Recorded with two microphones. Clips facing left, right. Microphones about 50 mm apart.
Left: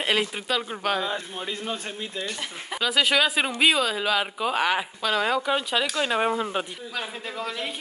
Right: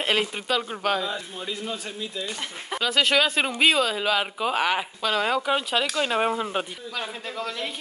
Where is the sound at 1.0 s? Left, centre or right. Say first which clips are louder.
Left 1 dB; left.